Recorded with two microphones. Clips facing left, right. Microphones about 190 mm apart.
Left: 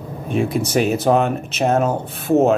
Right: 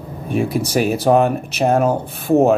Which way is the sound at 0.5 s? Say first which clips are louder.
Even; 30° right (ahead or behind).